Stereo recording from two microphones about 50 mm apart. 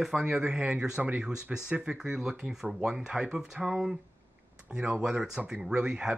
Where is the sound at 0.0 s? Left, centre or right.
Centre.